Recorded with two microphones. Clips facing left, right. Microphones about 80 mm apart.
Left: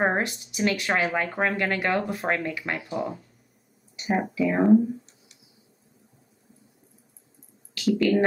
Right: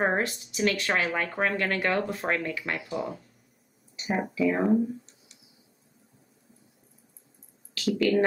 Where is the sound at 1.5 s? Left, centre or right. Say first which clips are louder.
Left 2 dB; centre.